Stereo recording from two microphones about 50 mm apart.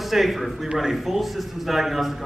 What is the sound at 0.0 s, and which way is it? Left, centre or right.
A man's voice, centre.